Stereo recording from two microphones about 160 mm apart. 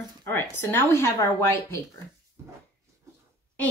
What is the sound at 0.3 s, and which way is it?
Speech, 15° left (ahead or behind).